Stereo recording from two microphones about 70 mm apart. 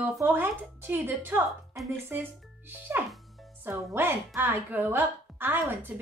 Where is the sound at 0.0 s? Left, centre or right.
Right.